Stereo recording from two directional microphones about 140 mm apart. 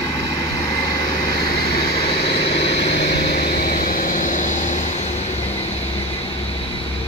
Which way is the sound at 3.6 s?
85° left.